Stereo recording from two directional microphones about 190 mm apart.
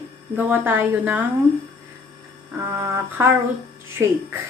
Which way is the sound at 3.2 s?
15° right (ahead or behind).